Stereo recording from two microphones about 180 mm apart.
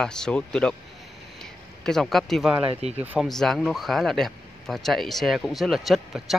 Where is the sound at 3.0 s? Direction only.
10° right (ahead or behind).